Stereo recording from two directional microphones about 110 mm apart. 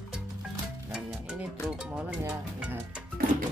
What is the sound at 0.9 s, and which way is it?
Music, 10° right (ahead or behind).